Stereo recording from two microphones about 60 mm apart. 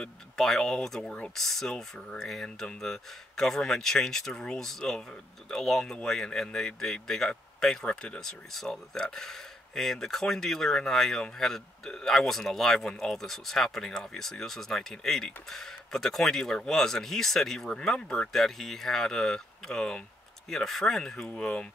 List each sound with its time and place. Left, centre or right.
0.0 s speech: centre